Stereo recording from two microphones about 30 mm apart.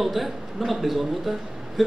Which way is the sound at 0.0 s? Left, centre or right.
Centre.